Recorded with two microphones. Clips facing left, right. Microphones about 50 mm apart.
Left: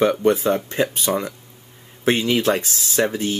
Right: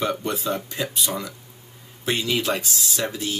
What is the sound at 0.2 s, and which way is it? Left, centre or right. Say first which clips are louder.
Speech: left 8 dB; left.